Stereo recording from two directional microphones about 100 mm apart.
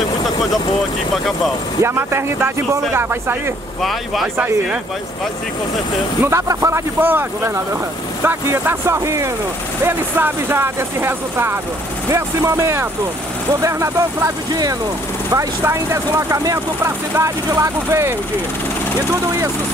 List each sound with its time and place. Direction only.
1.1 s speech: centre (ahead or behind)
1.8 s speech: 25° right (ahead or behind)
3.8 s speech: centre (ahead or behind)
6.2 s speech: 30° right (ahead or behind)
14.5 s speech: 40° right (ahead or behind)
15.3 s speech: 30° right (ahead or behind)